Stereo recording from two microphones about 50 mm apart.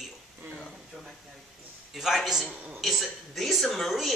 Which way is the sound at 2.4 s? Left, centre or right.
Right.